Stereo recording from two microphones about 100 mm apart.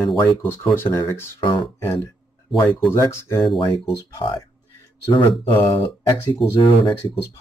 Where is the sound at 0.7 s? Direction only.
25° left (ahead or behind).